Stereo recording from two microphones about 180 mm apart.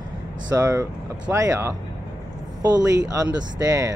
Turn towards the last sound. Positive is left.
turn(degrees=-20)  # may be behind; listen again after turning